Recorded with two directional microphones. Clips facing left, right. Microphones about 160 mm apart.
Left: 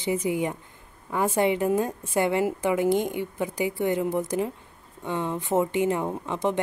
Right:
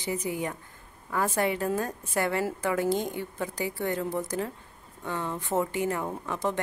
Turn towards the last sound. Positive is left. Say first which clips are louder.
# left 4 dB
turn(degrees=20)  # may be behind; listen again after turning